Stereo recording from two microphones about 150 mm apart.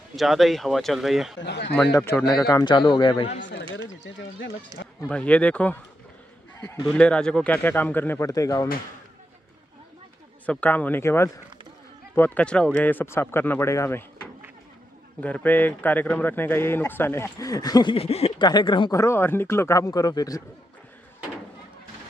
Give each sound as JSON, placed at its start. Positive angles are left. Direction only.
{"t": 0.1, "sound": "speech", "side_deg": 0}
{"t": 1.9, "sound": "a man's voice", "side_deg": 15}
{"t": 2.2, "sound": "a man's voice", "side_deg": 25}
{"t": 4.7, "sound": "speech", "side_deg": -25}
{"t": 5.0, "sound": "a man's voice", "side_deg": 10}
{"t": 6.8, "sound": "a man's voice", "side_deg": 5}
{"t": 10.4, "sound": "a man's voice", "side_deg": 10}
{"t": 15.1, "sound": "a man's voice", "side_deg": 10}
{"t": 17.9, "sound": "a man's voice", "side_deg": 40}
{"t": 18.4, "sound": "a man's voice", "side_deg": 30}
{"t": 18.9, "sound": "a man's voice", "side_deg": 15}